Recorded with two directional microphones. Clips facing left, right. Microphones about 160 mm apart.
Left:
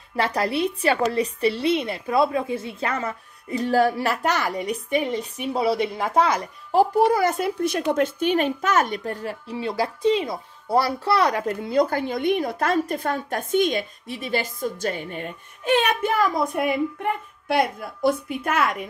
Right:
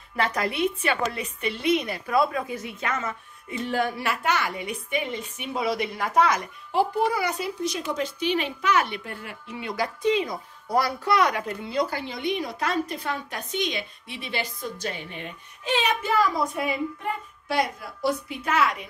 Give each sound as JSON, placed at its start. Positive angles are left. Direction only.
{"t": 0.1, "sound": "a woman's voice", "side_deg": 30}